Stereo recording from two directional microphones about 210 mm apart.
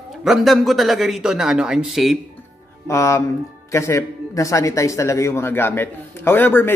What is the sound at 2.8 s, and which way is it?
A man's voice, 15° left (ahead or behind).